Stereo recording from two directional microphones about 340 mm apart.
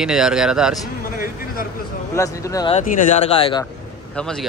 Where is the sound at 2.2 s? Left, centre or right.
Centre.